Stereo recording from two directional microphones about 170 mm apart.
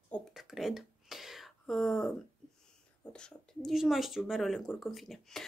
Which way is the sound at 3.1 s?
5° left (ahead or behind).